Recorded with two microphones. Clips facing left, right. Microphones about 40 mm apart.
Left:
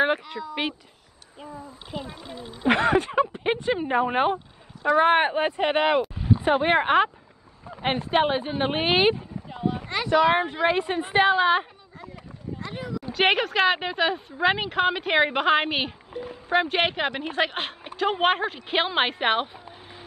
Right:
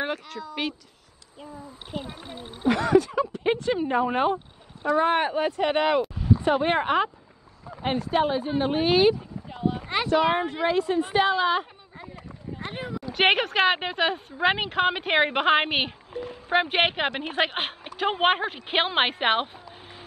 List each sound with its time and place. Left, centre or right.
0.3 s speech: centre
2.0 s speech: right
2.6 s speech: left
3.6 s speech: left
4.8 s speech: left
7.8 s speech: left
9.5 s clip-clop: centre
10.4 s speech: left
10.7 s speech: left
11.1 s speech: left
12.7 s a sound: right
13.1 s speech: centre
16.1 s a sound: centre
16.4 s speech: centre